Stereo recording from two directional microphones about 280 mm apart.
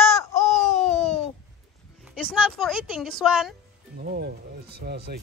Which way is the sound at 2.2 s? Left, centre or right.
Centre.